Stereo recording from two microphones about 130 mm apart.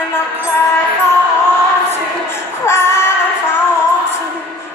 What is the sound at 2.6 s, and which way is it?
Music, 20° left (ahead or behind).